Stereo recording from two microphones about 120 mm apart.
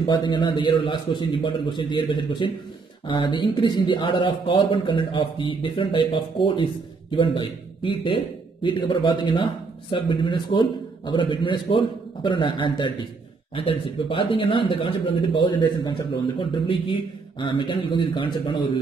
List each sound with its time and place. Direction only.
0.0 s speech: 40° left (ahead or behind)